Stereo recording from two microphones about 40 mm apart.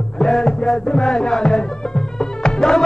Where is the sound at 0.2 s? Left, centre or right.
Centre.